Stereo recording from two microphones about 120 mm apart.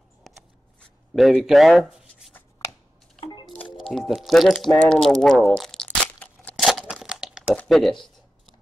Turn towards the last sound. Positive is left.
turn(degrees=0)  # may be behind; listen again after turning